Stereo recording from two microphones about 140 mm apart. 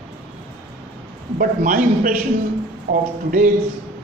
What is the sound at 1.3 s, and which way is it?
Speech, 80° right.